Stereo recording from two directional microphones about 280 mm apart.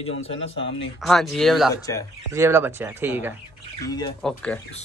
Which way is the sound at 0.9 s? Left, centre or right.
Centre.